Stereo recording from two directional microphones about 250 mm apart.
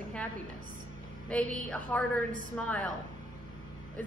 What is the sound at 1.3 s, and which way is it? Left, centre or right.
A woman's voice, centre.